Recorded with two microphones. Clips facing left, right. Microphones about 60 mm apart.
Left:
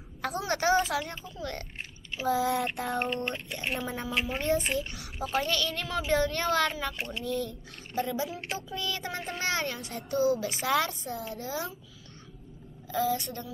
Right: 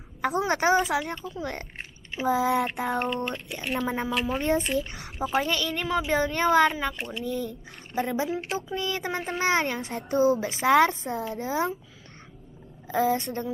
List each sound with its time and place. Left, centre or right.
0.2 s speech: right
4.1 s speech: centre
4.4 s speech: right
12.8 s speech: right